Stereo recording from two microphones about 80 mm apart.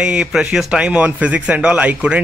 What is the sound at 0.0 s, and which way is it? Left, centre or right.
A man's voice, centre.